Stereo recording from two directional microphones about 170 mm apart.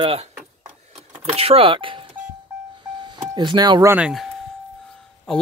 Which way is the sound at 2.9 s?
25° right (ahead or behind).